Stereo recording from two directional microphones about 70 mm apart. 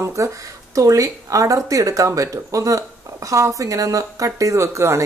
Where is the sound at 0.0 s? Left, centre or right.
Right.